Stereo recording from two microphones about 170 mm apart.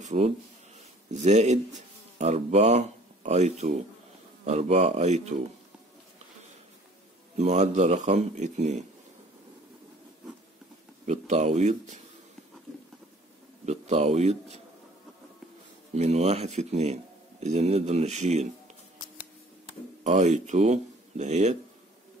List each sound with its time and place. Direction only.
0.0 s speech: 40° right (ahead or behind)
7.3 s speech: 40° right (ahead or behind)
11.1 s speech: 40° right (ahead or behind)
13.7 s speech: 40° right (ahead or behind)
15.9 s speech: 40° right (ahead or behind)
20.0 s speech: 40° right (ahead or behind)